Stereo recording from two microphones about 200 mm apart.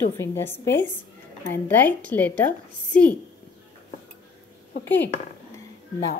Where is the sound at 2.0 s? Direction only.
5° left (ahead or behind).